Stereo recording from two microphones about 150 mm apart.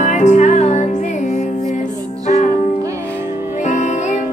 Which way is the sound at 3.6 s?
55° left (ahead or behind).